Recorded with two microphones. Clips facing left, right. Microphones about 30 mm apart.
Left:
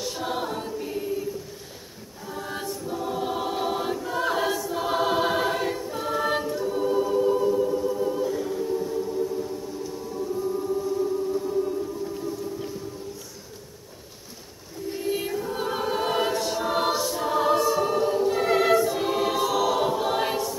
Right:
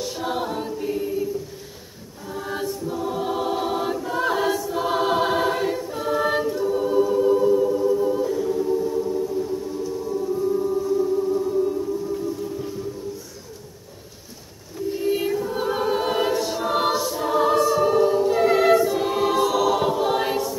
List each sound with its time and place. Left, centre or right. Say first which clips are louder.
0.0 s choir: right 3 dB; centre
2.2 s choir: right 4 dB; centre
10.0 s music: right 5 dB; centre
14.9 s choir: right 5 dB; centre